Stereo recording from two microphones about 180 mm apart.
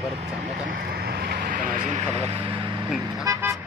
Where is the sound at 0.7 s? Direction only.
60° right (ahead or behind).